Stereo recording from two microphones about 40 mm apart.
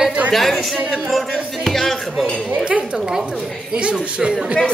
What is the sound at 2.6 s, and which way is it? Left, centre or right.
Speech, right.